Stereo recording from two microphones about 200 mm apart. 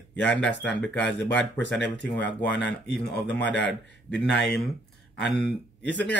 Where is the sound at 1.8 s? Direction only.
60° left (ahead or behind).